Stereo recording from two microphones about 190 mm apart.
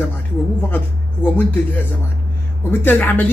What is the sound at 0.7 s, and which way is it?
Speech, 10° left (ahead or behind).